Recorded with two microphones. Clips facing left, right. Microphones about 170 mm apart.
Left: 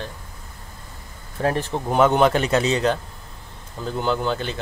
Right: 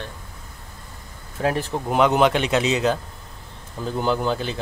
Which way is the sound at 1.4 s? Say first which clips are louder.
Even; 5° right (ahead or behind).